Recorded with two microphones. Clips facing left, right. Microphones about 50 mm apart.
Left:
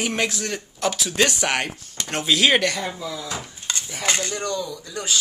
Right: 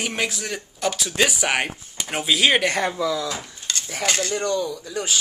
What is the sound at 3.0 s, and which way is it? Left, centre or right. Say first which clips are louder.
Speech: right 8 dB; right.